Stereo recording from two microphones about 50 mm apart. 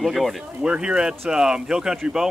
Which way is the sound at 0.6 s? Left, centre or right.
Centre.